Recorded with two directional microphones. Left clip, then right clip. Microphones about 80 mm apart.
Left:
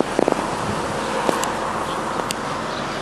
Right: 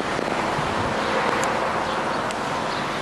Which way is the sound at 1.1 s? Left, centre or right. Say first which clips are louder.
Left 2 dB; right.